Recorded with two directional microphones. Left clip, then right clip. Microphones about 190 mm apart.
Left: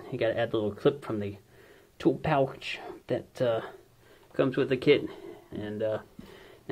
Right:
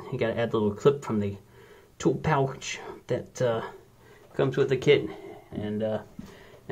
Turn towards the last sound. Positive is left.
turn(degrees=25)  # may be behind; listen again after turning